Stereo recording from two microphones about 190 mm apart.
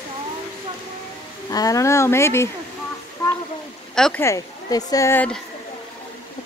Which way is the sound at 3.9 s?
5° left (ahead or behind).